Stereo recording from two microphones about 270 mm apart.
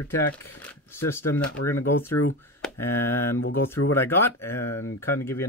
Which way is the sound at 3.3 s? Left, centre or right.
Left.